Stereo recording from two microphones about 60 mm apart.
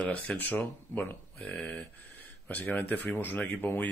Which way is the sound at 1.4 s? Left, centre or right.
Centre.